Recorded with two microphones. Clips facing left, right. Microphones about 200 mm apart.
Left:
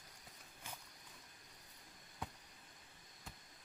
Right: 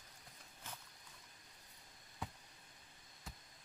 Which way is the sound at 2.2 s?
Centre (ahead or behind).